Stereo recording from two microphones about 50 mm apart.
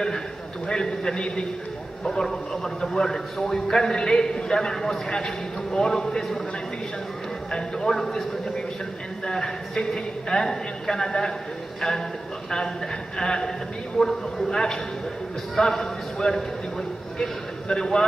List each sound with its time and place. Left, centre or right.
0.7 s a man's voice: centre
7.5 s a man's voice: centre
12.4 s a man's voice: centre